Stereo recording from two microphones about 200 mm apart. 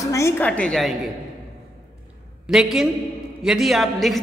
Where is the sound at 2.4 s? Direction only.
Centre (ahead or behind).